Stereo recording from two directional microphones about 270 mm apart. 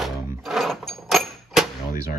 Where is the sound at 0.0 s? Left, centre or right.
Centre.